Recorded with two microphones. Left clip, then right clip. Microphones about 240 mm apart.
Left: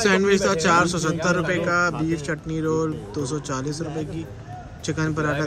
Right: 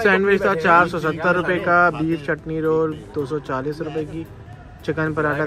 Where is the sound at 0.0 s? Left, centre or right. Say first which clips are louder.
Right 3 dB; centre.